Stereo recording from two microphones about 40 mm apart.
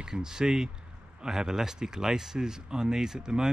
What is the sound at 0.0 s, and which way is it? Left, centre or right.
Speech, centre.